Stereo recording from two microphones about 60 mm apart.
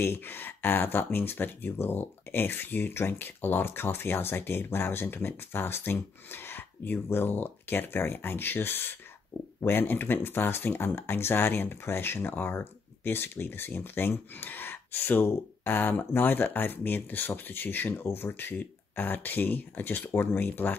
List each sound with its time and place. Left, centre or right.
0.0 s speech: left